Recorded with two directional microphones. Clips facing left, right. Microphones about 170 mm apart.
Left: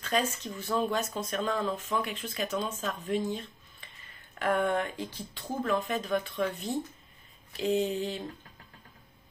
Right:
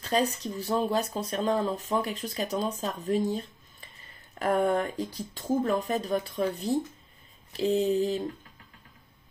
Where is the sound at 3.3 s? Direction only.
40° right (ahead or behind).